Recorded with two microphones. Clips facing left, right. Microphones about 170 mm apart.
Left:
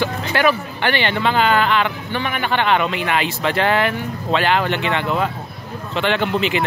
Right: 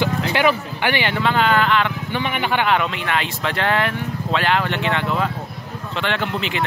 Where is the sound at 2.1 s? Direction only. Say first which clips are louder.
Even; 15° right (ahead or behind).